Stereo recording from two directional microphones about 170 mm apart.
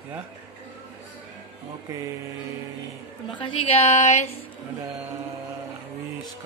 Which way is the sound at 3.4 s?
30° left (ahead or behind).